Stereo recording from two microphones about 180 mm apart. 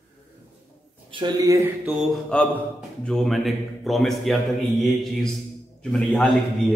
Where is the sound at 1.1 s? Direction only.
20° right (ahead or behind).